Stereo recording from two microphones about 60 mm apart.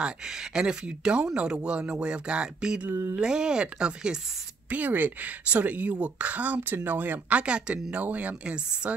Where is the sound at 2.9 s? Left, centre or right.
Right.